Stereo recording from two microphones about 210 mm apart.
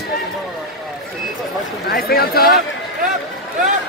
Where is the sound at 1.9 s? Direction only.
45° left (ahead or behind).